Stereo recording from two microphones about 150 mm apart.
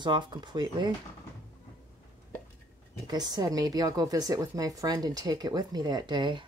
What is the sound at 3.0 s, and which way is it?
Speech, 25° right (ahead or behind).